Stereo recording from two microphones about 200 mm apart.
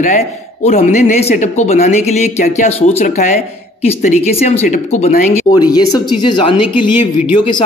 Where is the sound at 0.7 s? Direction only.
40° left (ahead or behind).